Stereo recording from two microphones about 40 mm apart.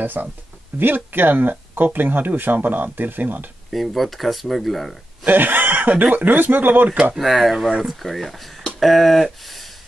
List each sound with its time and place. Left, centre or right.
0.0 s speech: right
3.7 s speech: centre
5.2 s speech: right
7.2 s speech: centre